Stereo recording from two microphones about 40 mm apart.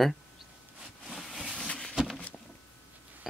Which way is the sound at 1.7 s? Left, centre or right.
Left.